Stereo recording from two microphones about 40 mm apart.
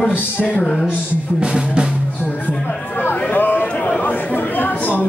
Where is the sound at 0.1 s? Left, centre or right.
Left.